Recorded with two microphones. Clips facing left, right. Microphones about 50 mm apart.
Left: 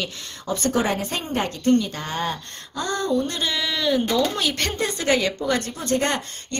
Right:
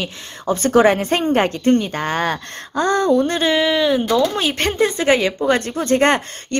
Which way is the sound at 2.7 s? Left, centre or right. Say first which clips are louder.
Right 8 dB; right.